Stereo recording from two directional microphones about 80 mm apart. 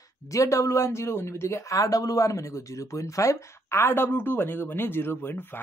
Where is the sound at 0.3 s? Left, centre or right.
Left.